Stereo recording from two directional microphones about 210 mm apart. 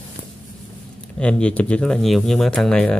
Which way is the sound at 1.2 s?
5° left (ahead or behind).